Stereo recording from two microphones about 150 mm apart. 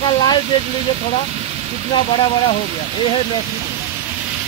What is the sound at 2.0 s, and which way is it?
Speech, 35° left (ahead or behind).